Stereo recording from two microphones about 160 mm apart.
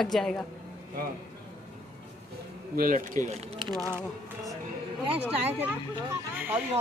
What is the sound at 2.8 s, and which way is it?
Speech, 60° right (ahead or behind).